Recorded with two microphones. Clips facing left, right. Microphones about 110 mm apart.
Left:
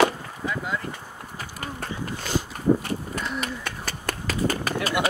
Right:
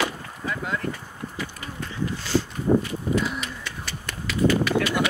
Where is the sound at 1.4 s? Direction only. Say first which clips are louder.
Left 1 dB; 50° left (ahead or behind).